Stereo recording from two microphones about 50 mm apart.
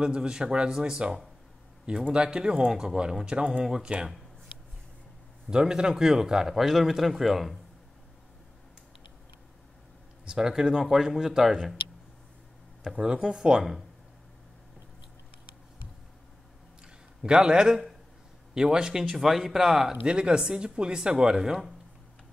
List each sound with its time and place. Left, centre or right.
0.0 s a man's voice: centre
5.5 s a man's voice: centre
10.2 s a man's voice: centre
12.9 s a man's voice: centre
16.8 s a sound: centre
18.5 s a man's voice: centre
19.1 s a man's voice: centre
20.1 s a man's voice: centre